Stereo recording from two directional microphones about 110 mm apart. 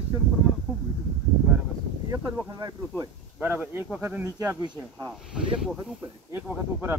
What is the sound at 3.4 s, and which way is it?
Speech, 15° right (ahead or behind).